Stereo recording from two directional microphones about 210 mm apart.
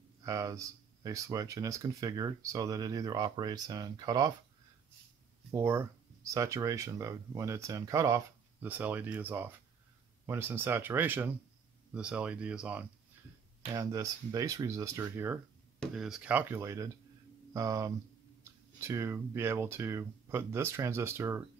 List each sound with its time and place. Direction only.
0.2 s speech: 15° right (ahead or behind)
5.5 s speech: 10° right (ahead or behind)
15.8 s speech: centre (ahead or behind)